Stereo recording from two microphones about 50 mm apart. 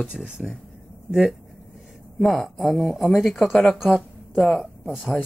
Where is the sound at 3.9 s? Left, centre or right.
Centre.